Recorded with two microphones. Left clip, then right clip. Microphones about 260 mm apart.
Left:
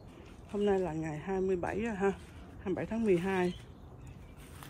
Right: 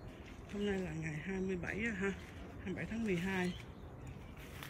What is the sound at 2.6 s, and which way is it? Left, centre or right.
Speech, left.